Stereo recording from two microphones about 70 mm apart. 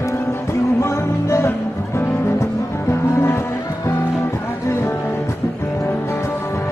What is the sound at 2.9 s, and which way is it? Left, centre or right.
Music, left.